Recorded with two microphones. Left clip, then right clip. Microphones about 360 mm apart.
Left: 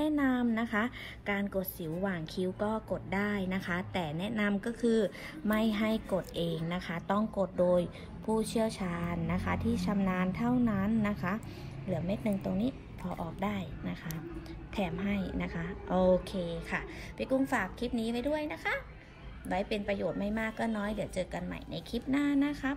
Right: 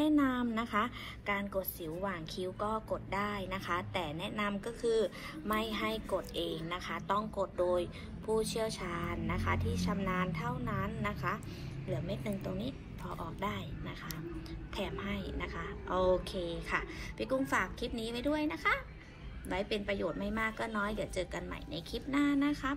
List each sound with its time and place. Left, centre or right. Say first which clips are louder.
0.0 s a woman's voice: even; left